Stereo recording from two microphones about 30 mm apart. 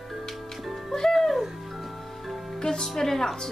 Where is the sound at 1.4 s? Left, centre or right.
Centre.